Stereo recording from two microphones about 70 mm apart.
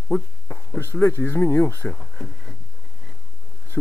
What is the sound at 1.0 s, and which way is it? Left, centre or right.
Speech, left.